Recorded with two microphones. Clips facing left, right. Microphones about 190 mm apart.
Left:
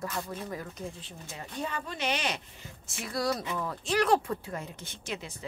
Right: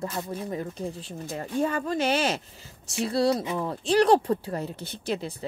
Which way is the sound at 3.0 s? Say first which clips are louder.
Right 8 dB; 30° right (ahead or behind).